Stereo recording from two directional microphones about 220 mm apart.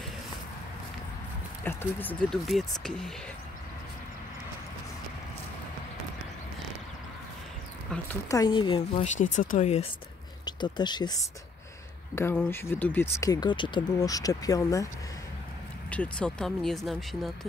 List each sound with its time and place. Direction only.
1.6 s speech: 10° left (ahead or behind)
7.9 s speech: 10° left (ahead or behind); by 9.8 s 30° left (ahead or behind)
10.4 s speech: 20° left (ahead or behind)
15.9 s speech: 5° left (ahead or behind)